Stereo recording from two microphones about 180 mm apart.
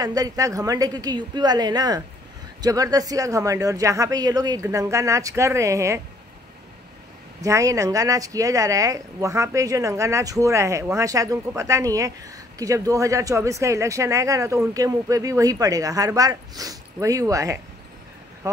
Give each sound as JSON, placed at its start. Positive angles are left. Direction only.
{"t": 0.0, "sound": "speech", "side_deg": -20}
{"t": 7.4, "sound": "speech", "side_deg": -15}